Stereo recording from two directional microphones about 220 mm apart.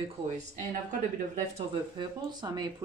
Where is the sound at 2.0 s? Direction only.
20° right (ahead or behind).